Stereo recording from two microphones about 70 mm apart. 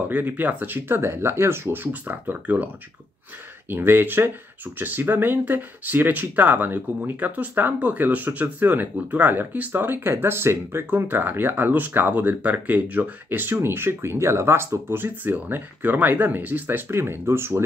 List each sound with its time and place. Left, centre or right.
0.1 s speech: right